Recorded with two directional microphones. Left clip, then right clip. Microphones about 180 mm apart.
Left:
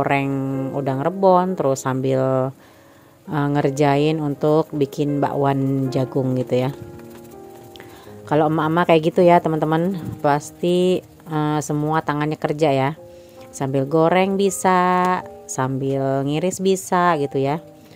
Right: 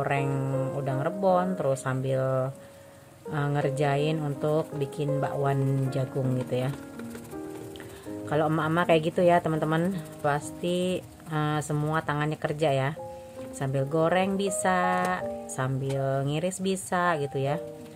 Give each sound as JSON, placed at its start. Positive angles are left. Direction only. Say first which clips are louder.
{"t": 0.0, "sound": "speech", "louder": "left 8 dB", "side_deg": 40}
{"t": 0.3, "sound": "speech", "louder": "left 5 dB", "side_deg": 25}
{"t": 0.8, "sound": "speech", "louder": "left 10 dB", "side_deg": 40}
{"t": 8.3, "sound": "speech", "louder": "left 8 dB", "side_deg": 30}